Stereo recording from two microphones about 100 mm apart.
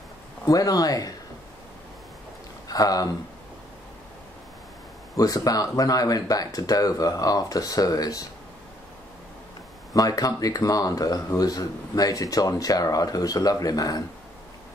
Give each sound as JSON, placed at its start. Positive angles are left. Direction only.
{"t": 0.5, "sound": "speech", "side_deg": 35}
{"t": 2.7, "sound": "speech", "side_deg": 40}
{"t": 5.1, "sound": "speech", "side_deg": 35}
{"t": 9.9, "sound": "speech", "side_deg": 40}